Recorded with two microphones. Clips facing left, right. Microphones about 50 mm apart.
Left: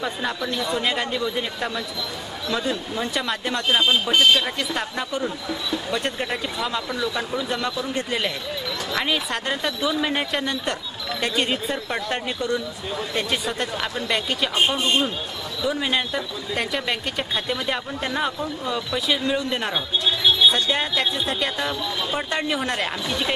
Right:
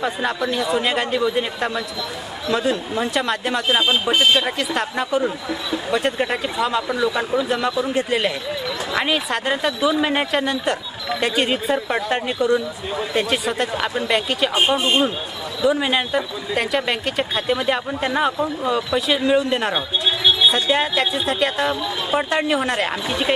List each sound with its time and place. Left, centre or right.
0.0 s speech: centre
4.6 s speech: centre
20.1 s a sound: centre
20.4 s speech: centre